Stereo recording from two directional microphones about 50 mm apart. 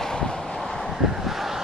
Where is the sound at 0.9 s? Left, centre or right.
Centre.